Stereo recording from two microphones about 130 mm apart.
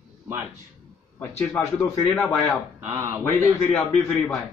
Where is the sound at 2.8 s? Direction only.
20° right (ahead or behind).